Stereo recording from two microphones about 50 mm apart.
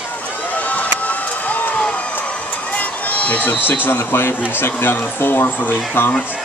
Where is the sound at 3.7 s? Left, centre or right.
Left.